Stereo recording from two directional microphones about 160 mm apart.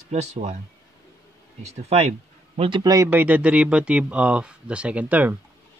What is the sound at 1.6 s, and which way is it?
Speech, 45° right (ahead or behind).